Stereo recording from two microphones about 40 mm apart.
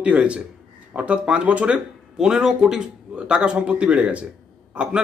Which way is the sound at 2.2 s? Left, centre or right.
Centre.